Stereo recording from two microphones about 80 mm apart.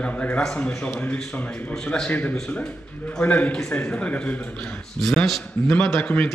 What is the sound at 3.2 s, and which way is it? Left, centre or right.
A man's voice, centre.